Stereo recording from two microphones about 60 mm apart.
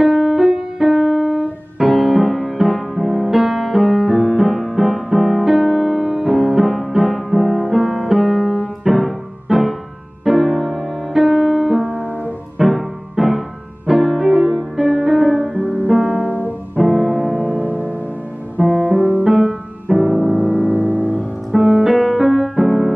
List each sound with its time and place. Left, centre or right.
0.0 s keyboard: centre
1.8 s music: centre
15.6 s music: right
16.8 s music: centre
17.3 s music: right
19.2 s music: centre
20.2 s music: right
21.5 s music: centre